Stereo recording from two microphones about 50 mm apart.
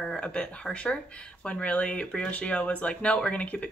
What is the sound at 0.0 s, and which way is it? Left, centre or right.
Speech, centre.